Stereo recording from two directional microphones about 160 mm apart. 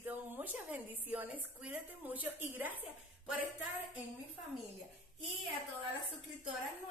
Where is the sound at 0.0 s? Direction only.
10° right (ahead or behind).